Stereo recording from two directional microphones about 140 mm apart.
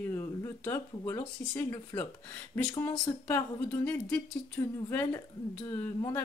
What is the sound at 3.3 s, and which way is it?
A woman's voice, 20° left (ahead or behind).